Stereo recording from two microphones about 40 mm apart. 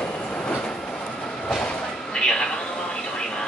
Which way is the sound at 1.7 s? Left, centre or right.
Left.